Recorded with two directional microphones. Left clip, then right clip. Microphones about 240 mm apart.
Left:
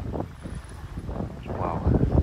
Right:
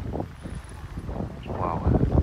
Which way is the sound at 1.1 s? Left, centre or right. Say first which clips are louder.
Even; centre.